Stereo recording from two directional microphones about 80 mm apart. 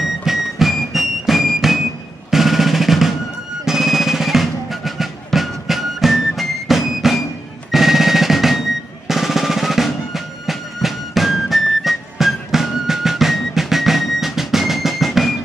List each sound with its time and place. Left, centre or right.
0.0 s music: centre
2.3 s drum: centre
3.6 s music: centre
7.7 s drum: centre